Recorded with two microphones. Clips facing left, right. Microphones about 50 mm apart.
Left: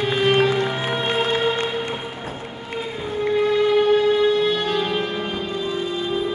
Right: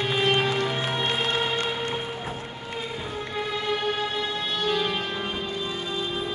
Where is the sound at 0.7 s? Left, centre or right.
Centre.